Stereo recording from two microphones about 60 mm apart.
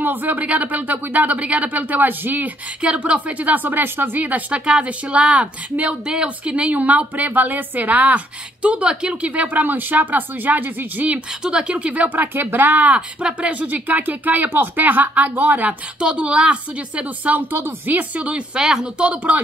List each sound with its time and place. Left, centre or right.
0.0 s speech: right
16.0 s speech: centre
18.6 s speech: centre